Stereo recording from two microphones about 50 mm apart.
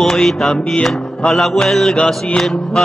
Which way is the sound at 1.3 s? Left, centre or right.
Centre.